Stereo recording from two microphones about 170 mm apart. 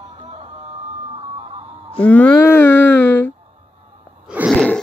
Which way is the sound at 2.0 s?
10° left (ahead or behind).